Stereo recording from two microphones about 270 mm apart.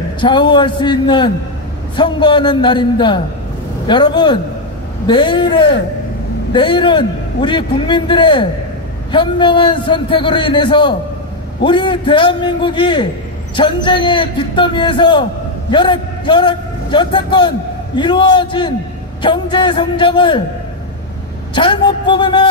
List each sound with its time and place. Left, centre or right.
0.2 s a man's voice: centre
21.5 s a man's voice: centre